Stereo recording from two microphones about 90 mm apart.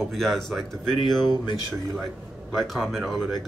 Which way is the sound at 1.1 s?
60° left (ahead or behind).